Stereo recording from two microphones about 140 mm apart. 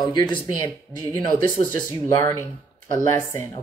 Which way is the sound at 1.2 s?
70° right (ahead or behind).